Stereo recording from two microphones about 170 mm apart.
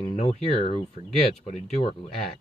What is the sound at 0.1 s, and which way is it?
Speech, 40° left (ahead or behind).